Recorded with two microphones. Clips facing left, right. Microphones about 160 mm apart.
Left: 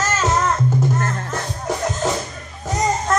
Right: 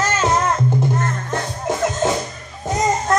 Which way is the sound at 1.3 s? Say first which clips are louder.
Right 2 dB; 20° right (ahead or behind).